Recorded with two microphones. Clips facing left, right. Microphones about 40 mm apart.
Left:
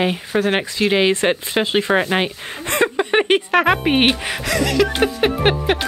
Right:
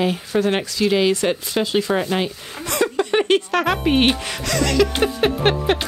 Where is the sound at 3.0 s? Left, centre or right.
Left.